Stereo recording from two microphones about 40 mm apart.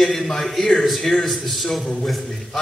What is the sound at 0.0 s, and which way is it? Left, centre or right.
A man's voice, centre.